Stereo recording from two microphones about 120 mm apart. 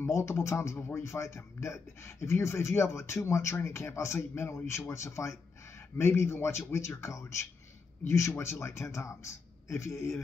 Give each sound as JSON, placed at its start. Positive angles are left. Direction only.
{"t": 0.0, "sound": "speech", "side_deg": 25}